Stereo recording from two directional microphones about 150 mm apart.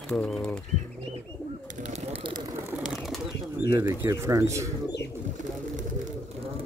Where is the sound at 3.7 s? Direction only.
20° right (ahead or behind).